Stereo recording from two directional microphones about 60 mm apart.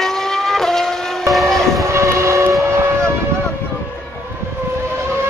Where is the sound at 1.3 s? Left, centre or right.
Centre.